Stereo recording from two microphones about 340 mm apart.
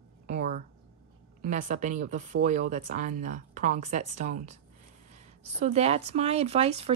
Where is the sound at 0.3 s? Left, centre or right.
Right.